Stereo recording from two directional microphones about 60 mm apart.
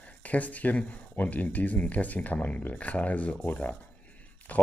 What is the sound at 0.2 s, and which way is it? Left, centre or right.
Speech, left.